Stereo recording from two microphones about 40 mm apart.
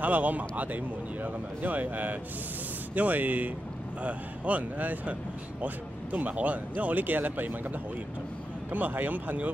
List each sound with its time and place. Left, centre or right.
0.0 s speech: right
6.1 s speech: right
8.7 s speech: right